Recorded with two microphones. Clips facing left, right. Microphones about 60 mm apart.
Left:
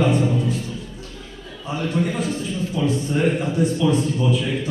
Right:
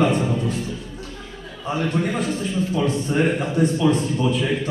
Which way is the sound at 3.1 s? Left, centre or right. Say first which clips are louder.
Right 2 dB; right.